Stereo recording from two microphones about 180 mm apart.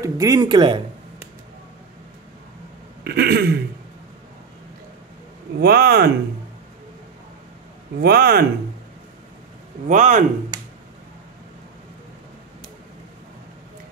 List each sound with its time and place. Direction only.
0.0 s speech: 20° right (ahead or behind)
3.0 s a sound: 65° right (ahead or behind)
5.6 s speech: 60° right (ahead or behind)
8.0 s speech: 60° right (ahead or behind)
9.8 s a man's voice: 45° right (ahead or behind)